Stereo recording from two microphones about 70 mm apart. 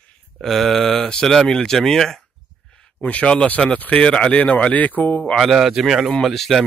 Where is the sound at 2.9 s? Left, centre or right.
Centre.